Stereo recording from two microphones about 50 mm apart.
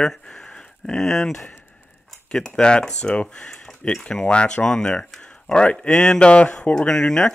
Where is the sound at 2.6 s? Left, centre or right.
Centre.